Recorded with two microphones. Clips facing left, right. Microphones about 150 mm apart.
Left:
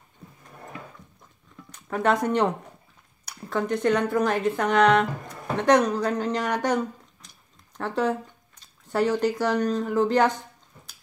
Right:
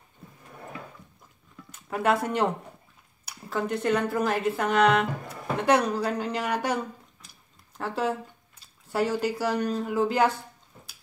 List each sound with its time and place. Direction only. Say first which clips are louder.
1.7 s speech: left 1 dB; 5° right (ahead or behind)